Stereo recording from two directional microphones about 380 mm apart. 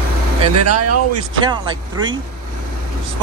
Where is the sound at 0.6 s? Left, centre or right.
Right.